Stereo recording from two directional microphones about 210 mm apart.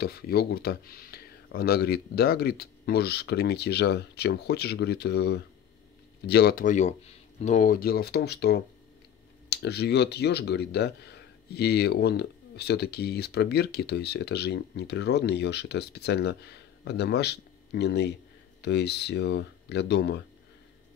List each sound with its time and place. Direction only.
0.0 s speech: 50° left (ahead or behind)